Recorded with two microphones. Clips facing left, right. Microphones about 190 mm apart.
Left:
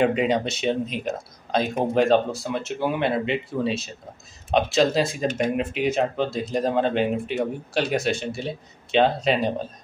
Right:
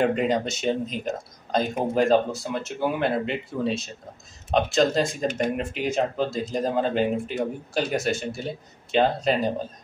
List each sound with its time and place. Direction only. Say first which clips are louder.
0.0 s speech: left 1 dB; centre (ahead or behind)